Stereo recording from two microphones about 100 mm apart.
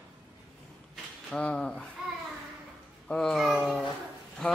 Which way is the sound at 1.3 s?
10° left (ahead or behind).